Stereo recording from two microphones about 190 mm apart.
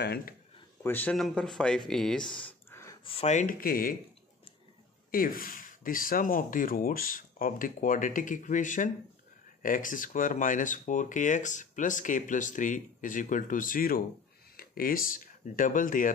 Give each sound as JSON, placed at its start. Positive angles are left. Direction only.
{"t": 0.0, "sound": "speech", "side_deg": 55}
{"t": 0.8, "sound": "speech", "side_deg": 10}
{"t": 1.9, "sound": "a sound", "side_deg": 5}
{"t": 3.0, "sound": "speech", "side_deg": 30}
{"t": 5.1, "sound": "speech", "side_deg": 50}